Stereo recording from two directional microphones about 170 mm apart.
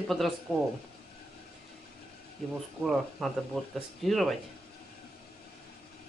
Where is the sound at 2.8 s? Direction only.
Centre (ahead or behind).